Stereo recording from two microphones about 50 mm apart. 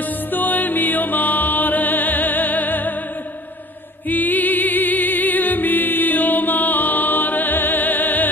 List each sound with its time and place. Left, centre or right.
0.3 s music: left
4.1 s music: left